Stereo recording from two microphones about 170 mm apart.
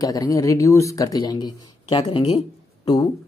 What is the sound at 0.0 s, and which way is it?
Speech, 20° left (ahead or behind).